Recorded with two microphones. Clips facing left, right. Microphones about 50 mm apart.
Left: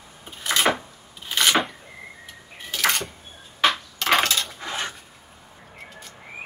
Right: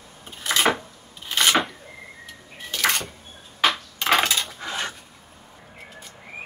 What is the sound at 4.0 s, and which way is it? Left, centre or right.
Cutlery, centre.